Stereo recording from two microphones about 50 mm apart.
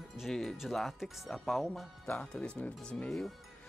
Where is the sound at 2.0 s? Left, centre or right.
Left.